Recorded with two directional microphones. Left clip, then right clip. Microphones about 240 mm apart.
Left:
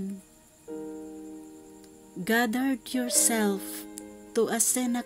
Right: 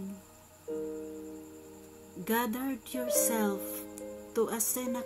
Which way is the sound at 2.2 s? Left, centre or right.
Left.